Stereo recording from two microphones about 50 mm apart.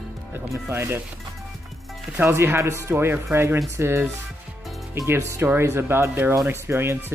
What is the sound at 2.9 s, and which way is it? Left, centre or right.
Speech, right.